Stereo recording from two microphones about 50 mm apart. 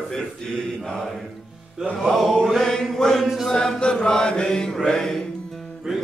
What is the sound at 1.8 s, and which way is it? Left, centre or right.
Chant, centre.